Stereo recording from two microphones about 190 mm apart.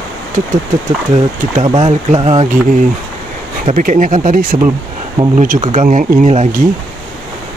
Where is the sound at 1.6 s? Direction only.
25° right (ahead or behind).